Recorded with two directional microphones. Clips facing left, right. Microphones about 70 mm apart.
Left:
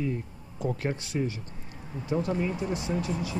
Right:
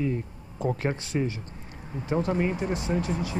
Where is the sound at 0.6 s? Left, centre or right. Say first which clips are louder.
Right 3 dB; right.